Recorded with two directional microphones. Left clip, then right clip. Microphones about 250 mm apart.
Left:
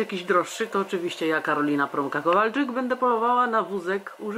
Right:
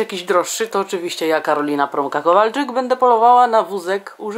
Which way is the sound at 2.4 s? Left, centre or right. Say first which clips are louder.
Right 7 dB; right.